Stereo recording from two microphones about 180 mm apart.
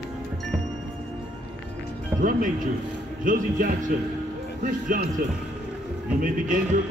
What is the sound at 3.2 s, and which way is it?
Speech, 50° right (ahead or behind).